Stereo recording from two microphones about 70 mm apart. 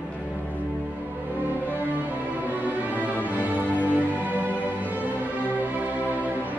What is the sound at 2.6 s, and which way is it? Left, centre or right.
Music, right.